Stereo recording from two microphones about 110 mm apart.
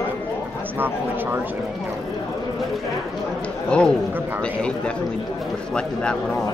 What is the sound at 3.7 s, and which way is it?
Speech, 10° left (ahead or behind).